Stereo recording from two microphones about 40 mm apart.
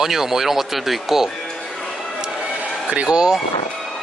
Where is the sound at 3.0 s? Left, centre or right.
Centre.